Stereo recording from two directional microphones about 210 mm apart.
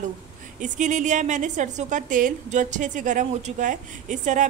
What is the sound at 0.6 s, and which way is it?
A woman's voice, 35° right (ahead or behind).